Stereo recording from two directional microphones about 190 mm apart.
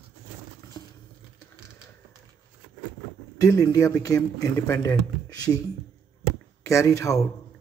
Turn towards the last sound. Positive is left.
turn(degrees=15)  # may be behind; listen again after turning